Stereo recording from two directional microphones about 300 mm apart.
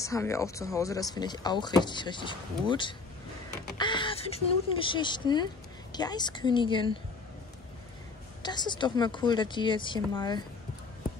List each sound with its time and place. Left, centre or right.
0.0 s speech: centre
8.4 s speech: centre